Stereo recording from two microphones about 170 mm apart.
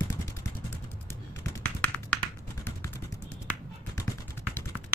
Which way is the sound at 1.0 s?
10° left (ahead or behind).